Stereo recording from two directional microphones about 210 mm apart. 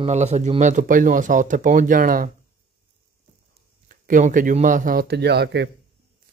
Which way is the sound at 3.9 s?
40° right (ahead or behind).